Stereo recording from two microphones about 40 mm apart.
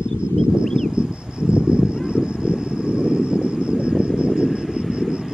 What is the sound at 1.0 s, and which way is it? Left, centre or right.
Insect, right.